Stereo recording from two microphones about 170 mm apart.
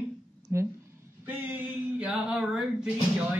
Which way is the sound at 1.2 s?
10° right (ahead or behind).